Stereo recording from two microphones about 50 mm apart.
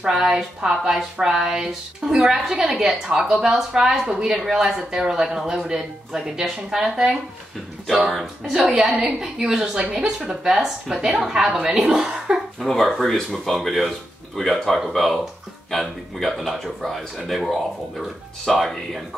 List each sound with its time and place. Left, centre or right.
0.0 s speech: centre
11.5 s a woman's voice: centre
12.5 s speech: centre